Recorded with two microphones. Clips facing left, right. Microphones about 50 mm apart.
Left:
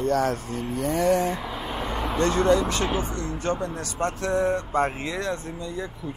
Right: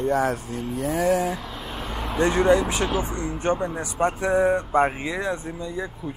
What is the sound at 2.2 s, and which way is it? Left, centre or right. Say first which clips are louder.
Speech: right 2 dB; centre.